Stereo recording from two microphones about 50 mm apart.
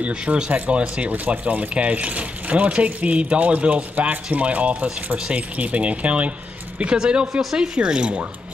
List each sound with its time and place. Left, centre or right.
0.0 s speech: right